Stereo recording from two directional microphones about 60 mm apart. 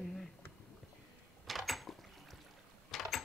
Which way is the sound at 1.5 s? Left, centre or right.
Centre.